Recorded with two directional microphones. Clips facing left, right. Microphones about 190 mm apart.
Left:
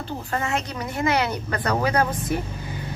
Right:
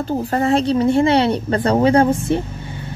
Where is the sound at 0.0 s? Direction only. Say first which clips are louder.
Right 9 dB; 40° right (ahead or behind).